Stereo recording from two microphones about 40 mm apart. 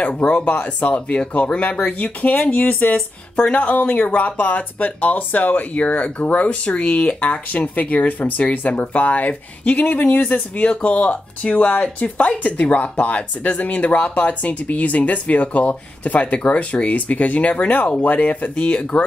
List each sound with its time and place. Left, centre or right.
0.0 s speech: left